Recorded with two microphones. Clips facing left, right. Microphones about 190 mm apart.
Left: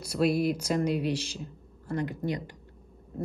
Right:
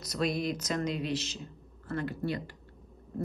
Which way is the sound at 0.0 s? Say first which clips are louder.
Left 5 dB; 10° left (ahead or behind).